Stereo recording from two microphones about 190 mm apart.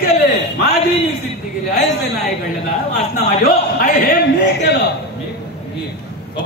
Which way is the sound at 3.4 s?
50° left (ahead or behind).